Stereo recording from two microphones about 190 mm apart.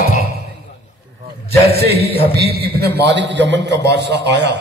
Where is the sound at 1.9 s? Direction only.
60° right (ahead or behind).